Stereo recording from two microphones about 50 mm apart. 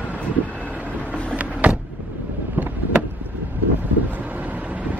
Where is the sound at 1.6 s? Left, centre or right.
Right.